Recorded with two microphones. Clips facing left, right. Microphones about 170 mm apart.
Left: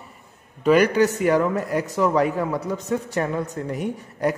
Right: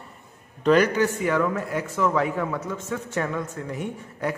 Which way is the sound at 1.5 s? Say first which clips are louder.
Left 4 dB; 40° left (ahead or behind).